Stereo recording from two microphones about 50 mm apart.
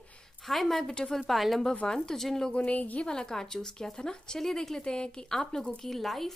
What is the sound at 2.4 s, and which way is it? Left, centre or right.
Speech, left.